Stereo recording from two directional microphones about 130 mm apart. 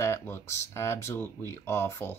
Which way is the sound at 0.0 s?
20° left (ahead or behind).